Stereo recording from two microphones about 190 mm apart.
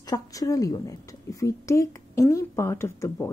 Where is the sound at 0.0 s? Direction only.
20° left (ahead or behind).